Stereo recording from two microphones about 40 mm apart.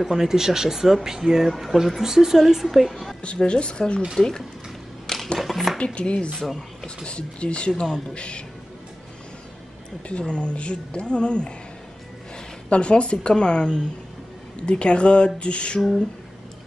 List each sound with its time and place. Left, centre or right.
0.0 s speech: centre
1.5 s speech: centre
2.0 s speech: centre
3.2 s a woman's voice: left
4.2 s speech: centre
5.0 s a sound: centre
5.4 s speech: centre
5.9 s a woman's voice: left
6.3 s speech: centre
7.1 s a woman's voice: left
10.0 s a woman's voice: left
12.6 s a woman's voice: left